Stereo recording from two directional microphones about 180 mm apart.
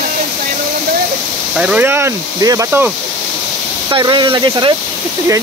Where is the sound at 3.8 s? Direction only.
25° right (ahead or behind).